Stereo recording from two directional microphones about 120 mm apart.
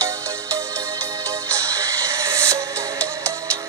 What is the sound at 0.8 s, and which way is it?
Music, 25° right (ahead or behind).